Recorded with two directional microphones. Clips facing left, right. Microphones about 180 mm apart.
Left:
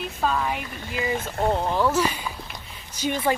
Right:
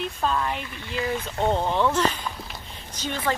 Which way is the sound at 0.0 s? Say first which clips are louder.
Even; 5° left (ahead or behind).